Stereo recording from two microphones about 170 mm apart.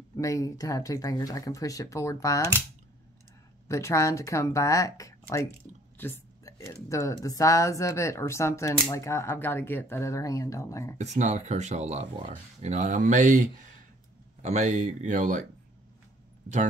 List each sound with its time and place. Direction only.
0.1 s speech: 20° left (ahead or behind)
3.6 s speech: 15° left (ahead or behind)
11.0 s speech: 45° right (ahead or behind)